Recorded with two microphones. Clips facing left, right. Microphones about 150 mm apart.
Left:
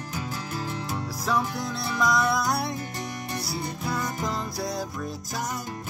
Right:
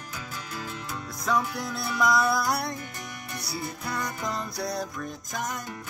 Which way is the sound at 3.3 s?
25° left (ahead or behind).